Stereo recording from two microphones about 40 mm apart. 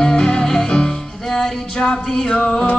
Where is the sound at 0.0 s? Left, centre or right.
Centre.